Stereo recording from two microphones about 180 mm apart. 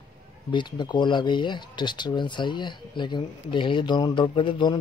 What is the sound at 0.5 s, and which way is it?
Speech, 25° left (ahead or behind).